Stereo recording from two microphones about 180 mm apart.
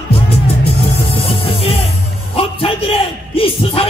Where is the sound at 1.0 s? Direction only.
30° left (ahead or behind).